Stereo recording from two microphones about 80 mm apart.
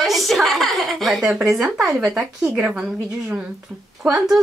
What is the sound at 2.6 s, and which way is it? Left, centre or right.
Speech, centre.